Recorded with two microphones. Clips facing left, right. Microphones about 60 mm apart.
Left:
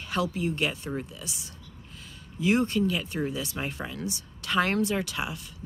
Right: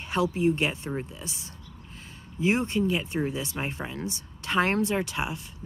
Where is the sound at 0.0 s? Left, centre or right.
Right.